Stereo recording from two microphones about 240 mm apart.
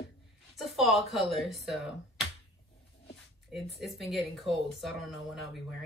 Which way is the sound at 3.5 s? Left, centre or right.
Centre.